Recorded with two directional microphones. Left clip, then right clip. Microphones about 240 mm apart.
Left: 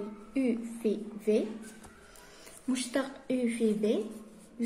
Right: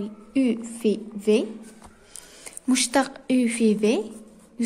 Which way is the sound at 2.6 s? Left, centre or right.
Right.